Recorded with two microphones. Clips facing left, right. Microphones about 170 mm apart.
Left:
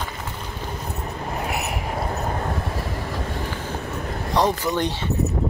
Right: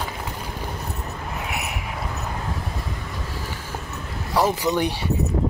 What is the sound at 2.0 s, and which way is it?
Vehicle, 45° left (ahead or behind).